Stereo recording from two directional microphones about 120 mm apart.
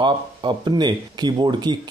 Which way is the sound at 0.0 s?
40° right (ahead or behind).